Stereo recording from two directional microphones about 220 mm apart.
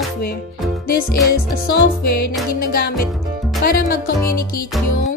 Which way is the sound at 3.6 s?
45° left (ahead or behind).